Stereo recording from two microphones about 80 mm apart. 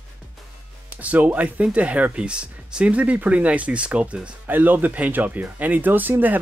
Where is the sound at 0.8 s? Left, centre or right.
Centre.